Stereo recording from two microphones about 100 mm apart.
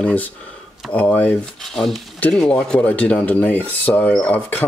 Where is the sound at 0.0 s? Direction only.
15° left (ahead or behind).